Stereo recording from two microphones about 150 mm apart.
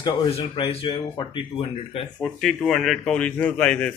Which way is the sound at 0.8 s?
35° left (ahead or behind).